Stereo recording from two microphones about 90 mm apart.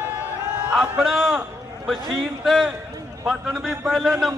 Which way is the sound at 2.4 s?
Centre (ahead or behind).